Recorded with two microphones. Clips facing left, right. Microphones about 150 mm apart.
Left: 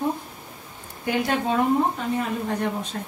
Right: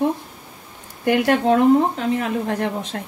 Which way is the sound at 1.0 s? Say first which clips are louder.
Right 7 dB; 75° right (ahead or behind).